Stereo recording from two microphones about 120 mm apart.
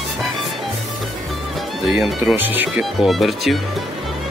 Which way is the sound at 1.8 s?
Centre (ahead or behind).